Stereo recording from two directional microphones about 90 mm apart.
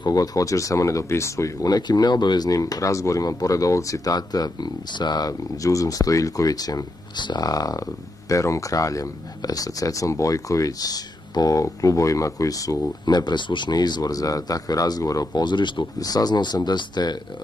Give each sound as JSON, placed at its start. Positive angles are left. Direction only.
{"t": 0.0, "sound": "speech", "side_deg": 45}
{"t": 15.4, "sound": "speech", "side_deg": 60}
{"t": 16.0, "sound": "speech", "side_deg": 45}